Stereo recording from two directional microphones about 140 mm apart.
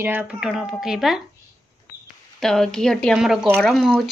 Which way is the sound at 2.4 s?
5° left (ahead or behind).